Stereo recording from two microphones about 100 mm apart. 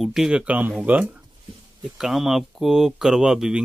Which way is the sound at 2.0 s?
5° right (ahead or behind).